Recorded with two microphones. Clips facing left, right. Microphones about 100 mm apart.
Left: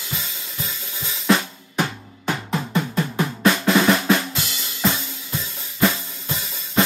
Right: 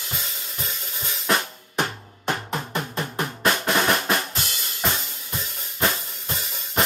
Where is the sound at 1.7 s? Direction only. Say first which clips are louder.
Left 2 dB; 25° right (ahead or behind).